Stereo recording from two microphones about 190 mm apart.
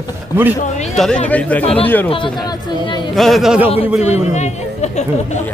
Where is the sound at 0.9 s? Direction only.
Centre (ahead or behind).